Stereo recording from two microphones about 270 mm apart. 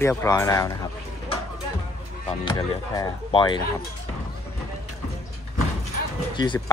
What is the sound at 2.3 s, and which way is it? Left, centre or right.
Speech, centre.